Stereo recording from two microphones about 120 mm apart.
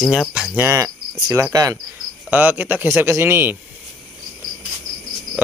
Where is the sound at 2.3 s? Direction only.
15° right (ahead or behind).